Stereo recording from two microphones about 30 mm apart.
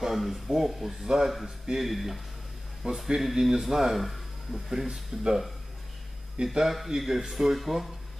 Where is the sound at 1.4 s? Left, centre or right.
Centre.